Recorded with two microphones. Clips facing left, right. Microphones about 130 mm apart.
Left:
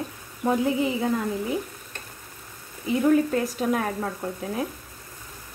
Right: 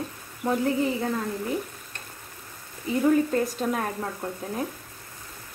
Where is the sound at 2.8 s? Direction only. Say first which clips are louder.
Left 1 dB; centre (ahead or behind).